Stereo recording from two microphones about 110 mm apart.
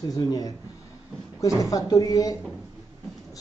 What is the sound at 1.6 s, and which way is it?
Speech, 35° left (ahead or behind).